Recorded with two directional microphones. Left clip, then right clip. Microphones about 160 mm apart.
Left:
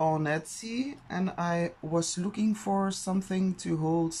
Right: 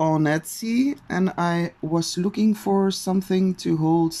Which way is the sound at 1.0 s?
45° right (ahead or behind).